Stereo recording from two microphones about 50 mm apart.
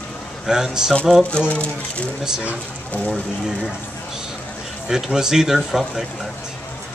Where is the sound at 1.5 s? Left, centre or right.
Left.